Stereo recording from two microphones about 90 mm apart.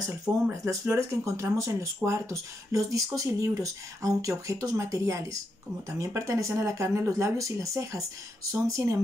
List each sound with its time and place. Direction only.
0.7 s speech: 35° right (ahead or behind)